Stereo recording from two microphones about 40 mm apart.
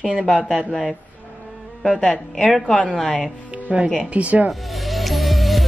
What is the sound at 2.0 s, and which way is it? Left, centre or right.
A woman's voice, centre.